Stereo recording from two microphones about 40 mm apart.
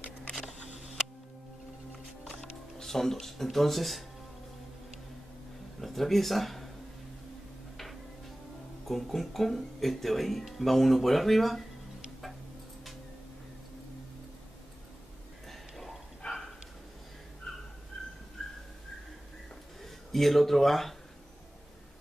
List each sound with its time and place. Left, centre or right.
2.8 s speech: centre
5.8 s speech: centre
7.7 s a sound: centre
8.8 s speech: centre
15.4 s a sound: centre
16.2 s dog: left
17.9 s dog: centre
19.8 s speech: centre